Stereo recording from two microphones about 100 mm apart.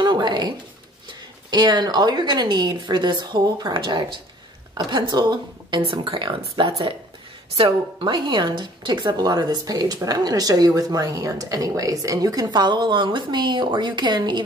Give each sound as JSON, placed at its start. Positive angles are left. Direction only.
{"t": 0.0, "sound": "a sound", "side_deg": -45}
{"t": 1.0, "sound": "a woman's voice", "side_deg": -45}
{"t": 5.8, "sound": "speech", "side_deg": -60}